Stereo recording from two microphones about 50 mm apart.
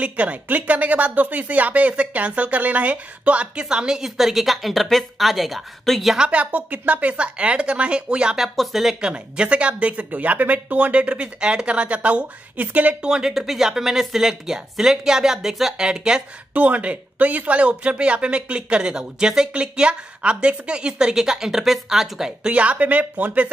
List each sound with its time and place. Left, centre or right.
0.0 s a woman's voice: right
4.0 s speech: centre
6.1 s speech: right
8.4 s speech: centre
9.0 s speech: right
13.0 s a woman's voice: centre
16.5 s a woman's voice: right; by 22.5 s centre
22.5 s speech: right